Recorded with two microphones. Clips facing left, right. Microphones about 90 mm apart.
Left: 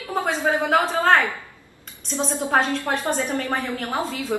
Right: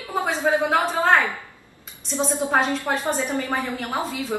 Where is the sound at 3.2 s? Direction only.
15° right (ahead or behind).